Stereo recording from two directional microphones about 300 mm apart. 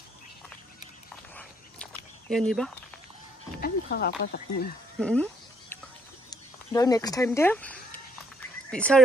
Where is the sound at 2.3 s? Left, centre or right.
Centre.